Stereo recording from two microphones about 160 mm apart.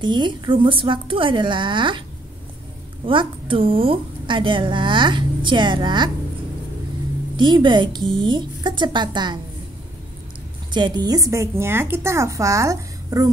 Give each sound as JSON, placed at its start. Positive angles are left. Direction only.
{"t": 0.0, "sound": "a woman's voice", "side_deg": -30}
{"t": 3.1, "sound": "a woman's voice", "side_deg": -30}
{"t": 7.3, "sound": "a woman's voice", "side_deg": -30}
{"t": 10.7, "sound": "a woman's voice", "side_deg": -25}